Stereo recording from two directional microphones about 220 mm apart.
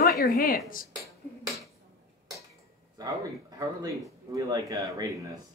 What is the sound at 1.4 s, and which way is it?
Dishes, 15° right (ahead or behind).